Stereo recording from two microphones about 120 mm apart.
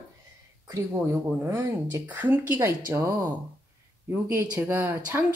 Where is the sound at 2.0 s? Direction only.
15° right (ahead or behind).